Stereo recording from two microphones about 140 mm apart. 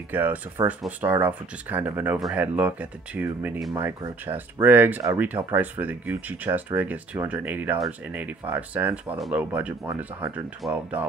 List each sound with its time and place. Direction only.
0.1 s speech: 15° right (ahead or behind)
3.7 s speech: 25° right (ahead or behind)
4.3 s speech: 15° right (ahead or behind)